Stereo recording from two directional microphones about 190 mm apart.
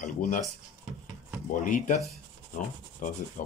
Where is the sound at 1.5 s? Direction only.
40° left (ahead or behind).